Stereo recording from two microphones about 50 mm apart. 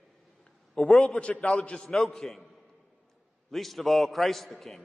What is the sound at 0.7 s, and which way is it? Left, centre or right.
A man's voice, centre.